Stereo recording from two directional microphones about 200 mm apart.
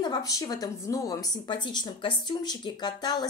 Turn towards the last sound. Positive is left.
turn(degrees=20)  # may be behind; listen again after turning